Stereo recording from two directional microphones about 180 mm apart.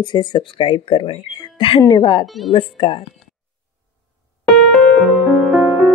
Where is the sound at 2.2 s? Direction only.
Centre (ahead or behind).